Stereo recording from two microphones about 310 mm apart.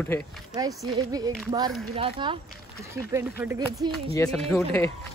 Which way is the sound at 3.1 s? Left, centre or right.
Centre.